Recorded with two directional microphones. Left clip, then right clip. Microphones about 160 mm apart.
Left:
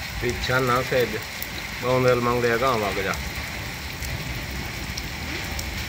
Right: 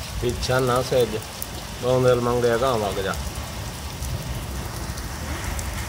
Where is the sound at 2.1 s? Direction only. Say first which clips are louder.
Right 1 dB; 5° right (ahead or behind).